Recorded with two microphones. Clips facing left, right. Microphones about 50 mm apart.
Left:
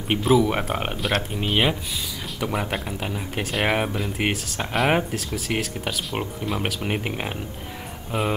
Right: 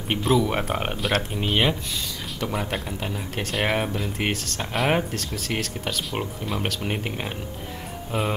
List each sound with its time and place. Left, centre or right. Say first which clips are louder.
0.1 s speech: left 2 dB; centre